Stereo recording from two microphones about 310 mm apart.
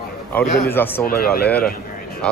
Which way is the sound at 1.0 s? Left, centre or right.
Left.